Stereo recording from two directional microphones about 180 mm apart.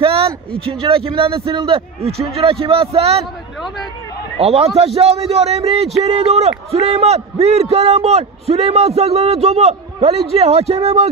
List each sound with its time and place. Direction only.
0.0 s a sound: 30° right (ahead or behind)
0.7 s a man's voice: 30° right (ahead or behind)
4.4 s a man's voice: 35° right (ahead or behind)